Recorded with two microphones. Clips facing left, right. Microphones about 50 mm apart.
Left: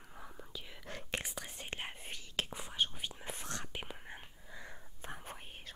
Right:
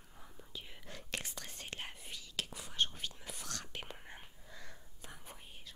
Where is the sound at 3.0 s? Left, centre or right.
Left.